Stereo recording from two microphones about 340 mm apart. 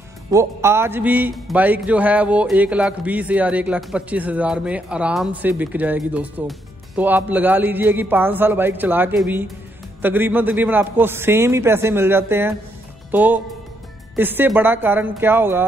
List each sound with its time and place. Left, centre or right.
0.3 s a man's voice: centre